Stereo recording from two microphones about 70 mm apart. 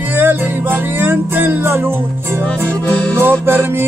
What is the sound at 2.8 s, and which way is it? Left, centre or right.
Music, left.